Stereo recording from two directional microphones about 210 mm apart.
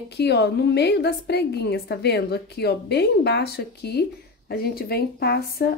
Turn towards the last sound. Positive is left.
turn(degrees=50)  # may be behind; listen again after turning